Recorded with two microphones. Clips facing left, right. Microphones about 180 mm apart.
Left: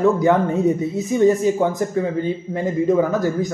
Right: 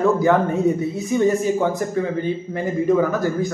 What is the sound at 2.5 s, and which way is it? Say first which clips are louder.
Speech: left 1 dB; 20° left (ahead or behind).